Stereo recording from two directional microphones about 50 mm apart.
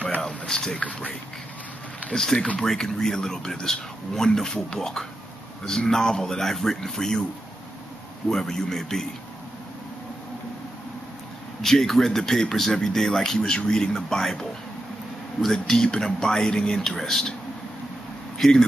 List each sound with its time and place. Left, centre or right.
0.2 s a sound: centre
0.7 s speech: left
2.1 s speech: centre
8.3 s speech: centre
11.6 s speech: centre
15.4 s speech: centre
18.4 s speech: centre